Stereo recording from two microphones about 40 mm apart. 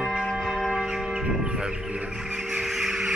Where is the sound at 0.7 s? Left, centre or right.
Centre.